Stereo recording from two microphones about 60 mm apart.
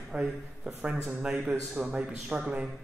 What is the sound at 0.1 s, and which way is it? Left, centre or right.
A man's voice, centre.